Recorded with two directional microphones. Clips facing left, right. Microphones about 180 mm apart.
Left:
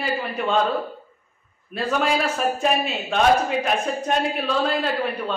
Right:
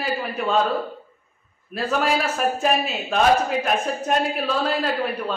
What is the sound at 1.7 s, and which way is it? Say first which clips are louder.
A man's voice: even; centre (ahead or behind).